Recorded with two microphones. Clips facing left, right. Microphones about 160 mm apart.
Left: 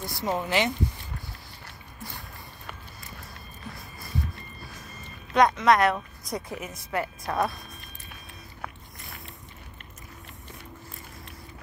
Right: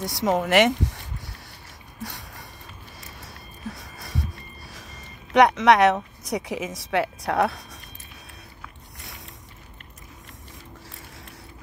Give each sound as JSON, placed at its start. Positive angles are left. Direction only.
{"t": 0.0, "sound": "a woman's voice", "side_deg": -85}
{"t": 2.0, "sound": "a sound", "side_deg": -80}
{"t": 3.7, "sound": "music", "side_deg": -90}
{"t": 5.3, "sound": "a woman's voice", "side_deg": -80}